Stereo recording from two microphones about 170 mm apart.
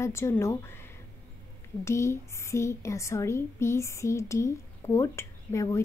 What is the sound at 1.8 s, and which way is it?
A woman's voice, 15° left (ahead or behind).